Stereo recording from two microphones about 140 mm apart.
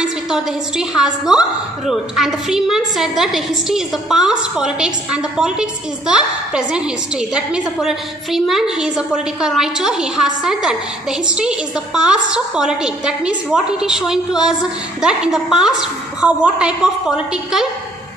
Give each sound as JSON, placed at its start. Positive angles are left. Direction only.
{"t": 0.0, "sound": "a woman's voice", "side_deg": -5}